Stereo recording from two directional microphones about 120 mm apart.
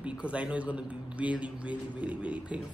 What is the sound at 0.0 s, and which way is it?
Speech, 10° right (ahead or behind).